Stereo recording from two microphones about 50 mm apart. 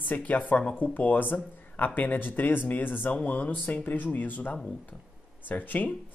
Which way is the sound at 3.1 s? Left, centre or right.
Left.